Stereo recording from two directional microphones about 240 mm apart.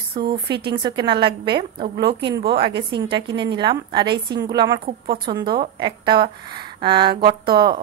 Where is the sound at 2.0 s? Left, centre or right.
Right.